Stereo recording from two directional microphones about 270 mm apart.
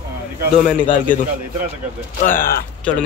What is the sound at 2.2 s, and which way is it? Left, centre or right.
Speech, left.